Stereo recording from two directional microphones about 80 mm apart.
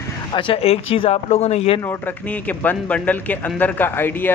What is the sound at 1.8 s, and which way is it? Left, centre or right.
A man's voice, left.